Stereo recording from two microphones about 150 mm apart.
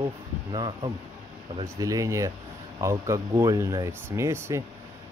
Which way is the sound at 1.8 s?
20° right (ahead or behind).